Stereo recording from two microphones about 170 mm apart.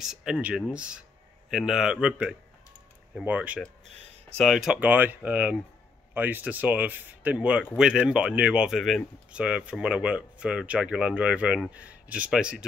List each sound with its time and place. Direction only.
0.0 s speech: 5° right (ahead or behind)